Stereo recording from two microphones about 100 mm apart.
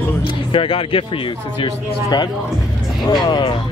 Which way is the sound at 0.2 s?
65° left (ahead or behind).